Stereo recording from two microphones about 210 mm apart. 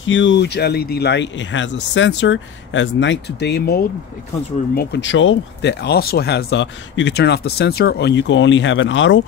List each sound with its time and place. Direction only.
0.0 s speech: 60° left (ahead or behind)